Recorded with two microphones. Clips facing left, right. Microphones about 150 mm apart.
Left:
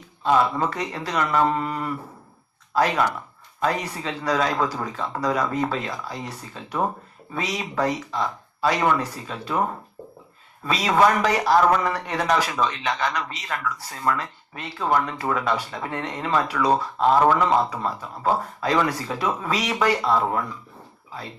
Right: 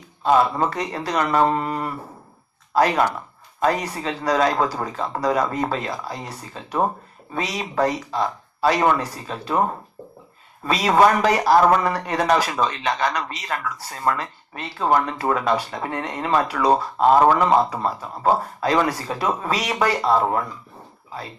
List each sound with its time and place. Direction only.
0.2 s speech: 35° right (ahead or behind)
10.6 s speech: 40° right (ahead or behind)